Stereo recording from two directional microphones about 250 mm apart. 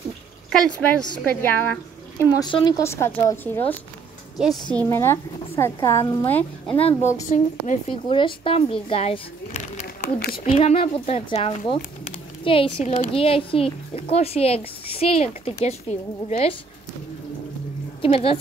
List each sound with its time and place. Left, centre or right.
1.4 s speech: centre
4.7 s speech: centre
6.7 s a woman's voice: left
18.0 s speech: left